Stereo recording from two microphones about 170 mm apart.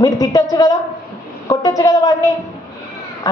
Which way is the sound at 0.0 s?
20° left (ahead or behind).